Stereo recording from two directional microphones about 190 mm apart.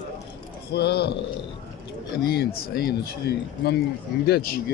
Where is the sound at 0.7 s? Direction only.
60° left (ahead or behind).